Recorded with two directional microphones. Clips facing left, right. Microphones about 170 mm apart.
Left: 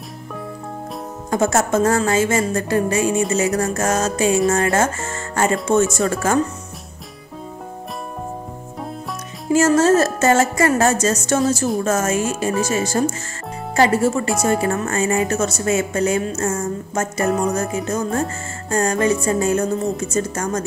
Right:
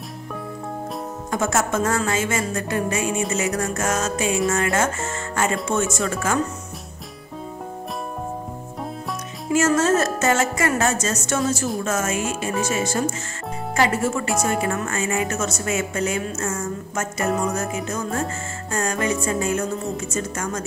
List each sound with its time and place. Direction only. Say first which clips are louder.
1.3 s speech: left 5 dB; 35° left (ahead or behind)
9.5 s speech: left 4 dB; 35° left (ahead or behind)